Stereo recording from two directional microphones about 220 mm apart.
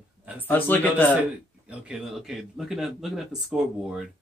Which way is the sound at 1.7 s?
5° right (ahead or behind).